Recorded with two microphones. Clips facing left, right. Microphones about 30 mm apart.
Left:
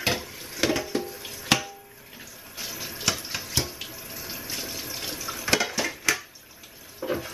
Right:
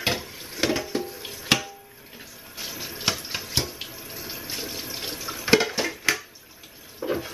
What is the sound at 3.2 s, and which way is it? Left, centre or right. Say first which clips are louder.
Water: right 1 dB; centre.